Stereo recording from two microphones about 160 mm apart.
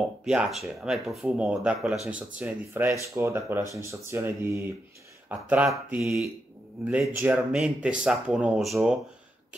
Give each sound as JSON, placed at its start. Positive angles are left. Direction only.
{"t": 0.2, "sound": "speech", "side_deg": -5}
{"t": 7.3, "sound": "speech", "side_deg": -5}